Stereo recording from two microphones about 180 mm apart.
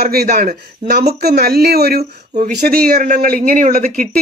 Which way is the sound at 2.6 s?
55° right (ahead or behind).